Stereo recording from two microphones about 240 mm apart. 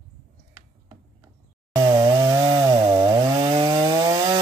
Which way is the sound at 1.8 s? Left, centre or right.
Centre.